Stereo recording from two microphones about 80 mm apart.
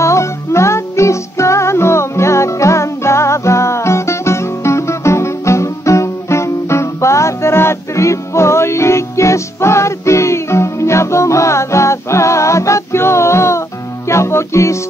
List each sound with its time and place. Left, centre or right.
0.0 s music: left